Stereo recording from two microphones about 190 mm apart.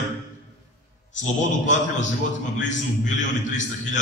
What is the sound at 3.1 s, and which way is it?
Speech, 40° left (ahead or behind).